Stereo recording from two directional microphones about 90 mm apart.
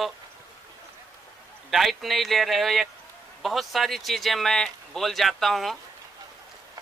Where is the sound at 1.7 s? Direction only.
Centre (ahead or behind).